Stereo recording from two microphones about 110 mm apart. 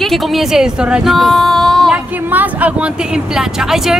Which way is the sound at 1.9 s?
15° right (ahead or behind).